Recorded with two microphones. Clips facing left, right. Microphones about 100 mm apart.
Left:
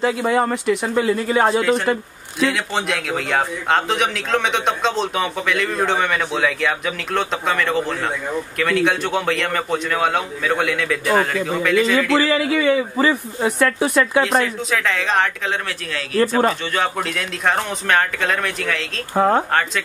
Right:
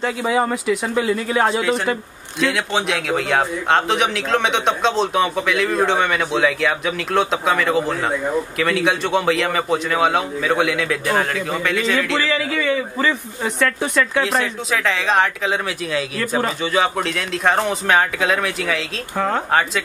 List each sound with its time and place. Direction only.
0.0 s a man's voice: centre (ahead or behind)
12.2 s a man's voice: 15° left (ahead or behind); by 15.5 s centre (ahead or behind)
16.7 s a man's voice: centre (ahead or behind)
19.1 s speech: 25° left (ahead or behind)